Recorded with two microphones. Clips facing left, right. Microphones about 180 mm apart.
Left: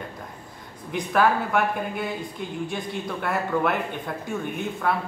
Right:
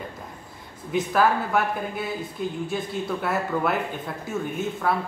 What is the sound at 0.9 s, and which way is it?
Speech, centre (ahead or behind).